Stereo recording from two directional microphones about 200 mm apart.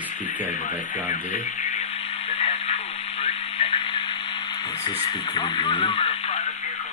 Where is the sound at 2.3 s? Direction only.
30° left (ahead or behind).